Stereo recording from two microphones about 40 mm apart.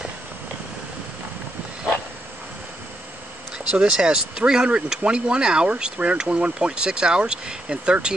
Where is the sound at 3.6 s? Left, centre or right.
Right.